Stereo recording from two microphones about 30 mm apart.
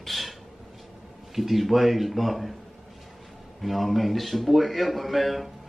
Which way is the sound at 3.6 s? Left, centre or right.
Centre.